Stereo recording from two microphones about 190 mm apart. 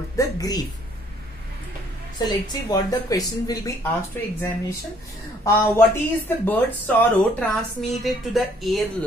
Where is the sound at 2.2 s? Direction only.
20° left (ahead or behind).